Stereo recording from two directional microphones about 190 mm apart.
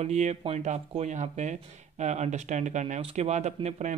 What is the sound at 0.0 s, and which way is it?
Speech, 35° right (ahead or behind).